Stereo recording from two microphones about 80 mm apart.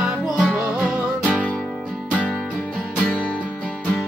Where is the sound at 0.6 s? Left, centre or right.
Centre.